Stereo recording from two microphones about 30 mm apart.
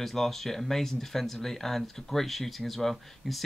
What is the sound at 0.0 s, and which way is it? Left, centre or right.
Speech, centre.